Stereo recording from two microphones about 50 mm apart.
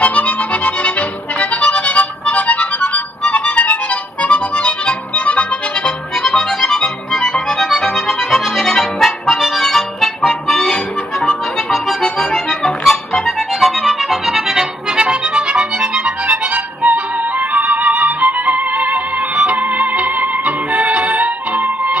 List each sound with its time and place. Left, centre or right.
0.0 s music: left
6.3 s music: centre
7.7 s accordion: centre
13.2 s music: centre; by 21.9 s right